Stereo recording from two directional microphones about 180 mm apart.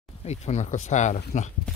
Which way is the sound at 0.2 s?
35° left (ahead or behind).